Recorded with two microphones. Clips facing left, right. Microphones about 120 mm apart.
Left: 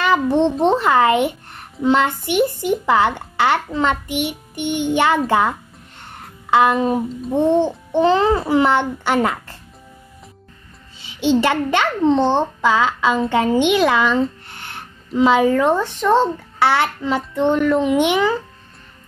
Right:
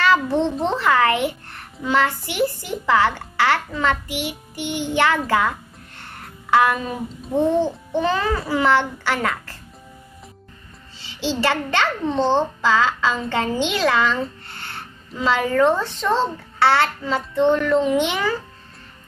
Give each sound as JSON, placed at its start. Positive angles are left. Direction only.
{"t": 0.0, "sound": "a child's voice", "side_deg": 15}
{"t": 11.0, "sound": "a child's voice", "side_deg": 20}